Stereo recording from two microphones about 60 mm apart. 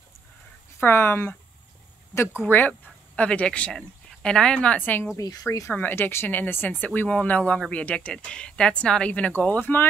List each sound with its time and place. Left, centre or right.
0.7 s speech: left
3.2 s speech: left
3.7 s speech: centre
5.1 s speech: left
5.7 s speech: left